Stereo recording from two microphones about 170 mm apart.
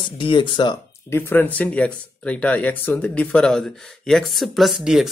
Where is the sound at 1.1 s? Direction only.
10° left (ahead or behind).